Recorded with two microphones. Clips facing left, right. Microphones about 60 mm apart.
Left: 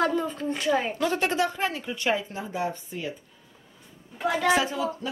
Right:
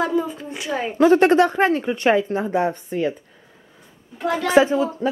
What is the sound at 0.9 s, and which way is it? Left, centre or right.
Speech, right.